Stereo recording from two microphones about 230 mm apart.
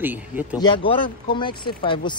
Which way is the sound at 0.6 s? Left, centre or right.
Centre.